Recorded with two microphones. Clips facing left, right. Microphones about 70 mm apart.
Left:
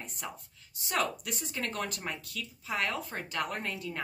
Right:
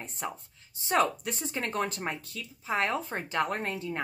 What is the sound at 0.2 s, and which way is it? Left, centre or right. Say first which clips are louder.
A woman's voice: right 7 dB; right.